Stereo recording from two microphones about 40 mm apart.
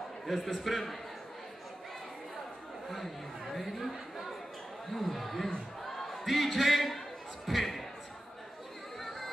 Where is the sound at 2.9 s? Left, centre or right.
Centre.